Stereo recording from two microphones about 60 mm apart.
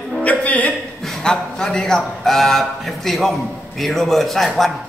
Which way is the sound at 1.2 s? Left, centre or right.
Centre.